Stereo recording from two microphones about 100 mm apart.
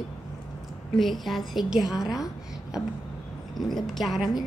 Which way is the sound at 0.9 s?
Centre (ahead or behind).